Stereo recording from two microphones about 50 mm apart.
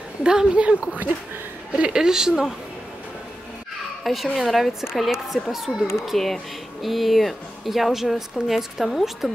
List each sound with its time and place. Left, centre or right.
0.2 s a woman's voice: centre
4.0 s a woman's voice: centre
6.1 s a woman's voice: centre